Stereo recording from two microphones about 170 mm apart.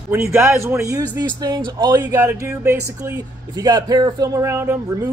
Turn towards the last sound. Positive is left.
turn(degrees=-15)  # may be behind; listen again after turning